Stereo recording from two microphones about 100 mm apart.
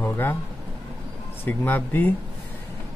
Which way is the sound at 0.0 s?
25° left (ahead or behind).